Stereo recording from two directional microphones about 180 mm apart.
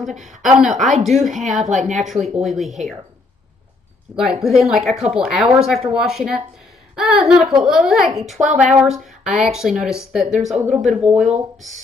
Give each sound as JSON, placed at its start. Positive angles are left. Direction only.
{"t": 0.1, "sound": "speech", "side_deg": -45}
{"t": 0.4, "sound": "speech", "side_deg": 0}
{"t": 1.7, "sound": "speech", "side_deg": -40}
{"t": 2.0, "sound": "speech", "side_deg": 0}
{"t": 4.2, "sound": "speech", "side_deg": 0}
{"t": 8.4, "sound": "speech", "side_deg": -40}
{"t": 8.9, "sound": "speech", "side_deg": 0}
{"t": 10.7, "sound": "speech", "side_deg": -40}